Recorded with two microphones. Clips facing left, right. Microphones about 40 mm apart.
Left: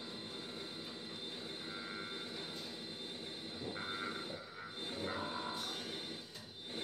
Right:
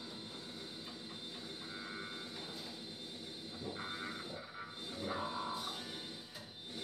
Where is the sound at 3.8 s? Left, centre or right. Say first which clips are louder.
Left 2 dB; left.